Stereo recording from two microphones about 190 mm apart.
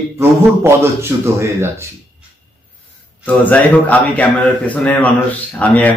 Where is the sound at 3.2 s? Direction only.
10° left (ahead or behind).